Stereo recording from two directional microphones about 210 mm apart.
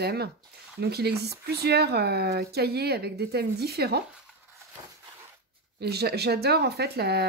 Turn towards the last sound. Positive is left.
turn(degrees=-50)  # may be behind; listen again after turning